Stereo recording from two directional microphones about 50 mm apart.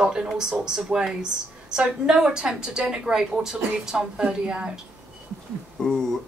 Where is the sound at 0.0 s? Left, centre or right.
Centre.